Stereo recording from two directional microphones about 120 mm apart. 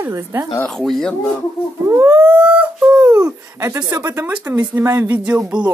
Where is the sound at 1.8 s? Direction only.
25° right (ahead or behind).